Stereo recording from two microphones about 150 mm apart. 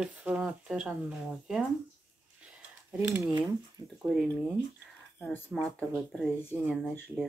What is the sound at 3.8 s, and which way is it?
Speech, 25° right (ahead or behind).